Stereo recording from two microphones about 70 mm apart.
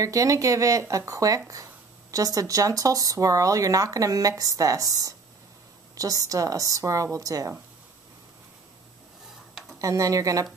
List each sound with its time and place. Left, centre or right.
0.0 s speech: right
9.8 s speech: right